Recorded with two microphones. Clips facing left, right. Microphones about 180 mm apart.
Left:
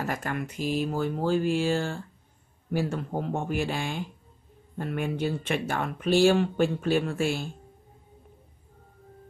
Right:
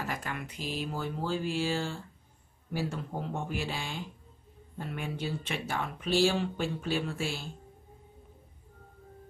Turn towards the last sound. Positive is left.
turn(degrees=55)  # may be behind; listen again after turning